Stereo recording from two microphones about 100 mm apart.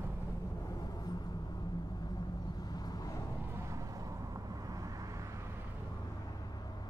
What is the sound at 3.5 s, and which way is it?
Vehicle, 30° right (ahead or behind).